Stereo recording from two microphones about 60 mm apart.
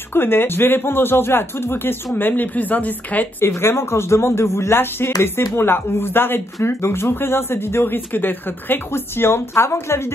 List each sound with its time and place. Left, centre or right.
0.1 s speech: left
3.3 s speech: left